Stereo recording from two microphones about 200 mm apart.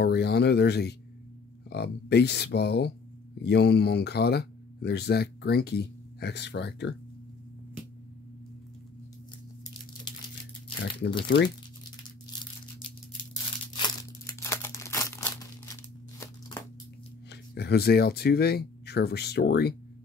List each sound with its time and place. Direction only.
0.0 s speech: 55° left (ahead or behind)
11.2 s speech: 55° left (ahead or behind)
13.7 s crumpling: 20° left (ahead or behind)
17.3 s speech: 55° left (ahead or behind)